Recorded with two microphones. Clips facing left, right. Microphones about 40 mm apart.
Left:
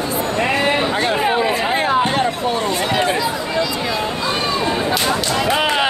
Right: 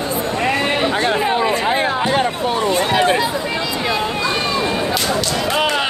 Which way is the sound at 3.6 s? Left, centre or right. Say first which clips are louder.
Right 1 dB; right.